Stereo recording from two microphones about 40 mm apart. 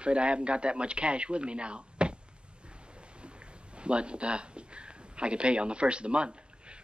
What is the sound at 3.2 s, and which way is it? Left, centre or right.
Speech, right.